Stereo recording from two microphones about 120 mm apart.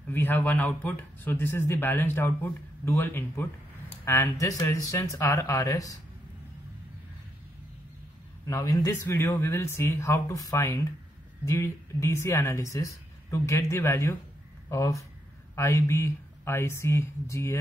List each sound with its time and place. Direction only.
0.1 s a man's voice: 15° left (ahead or behind)
8.5 s a man's voice: 25° left (ahead or behind)